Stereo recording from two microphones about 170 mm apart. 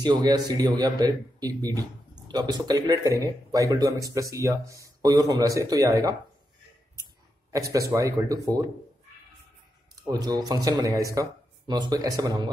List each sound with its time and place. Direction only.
0.0 s speech: 25° right (ahead or behind)
7.5 s speech: 20° right (ahead or behind)
10.0 s speech: 25° right (ahead or behind)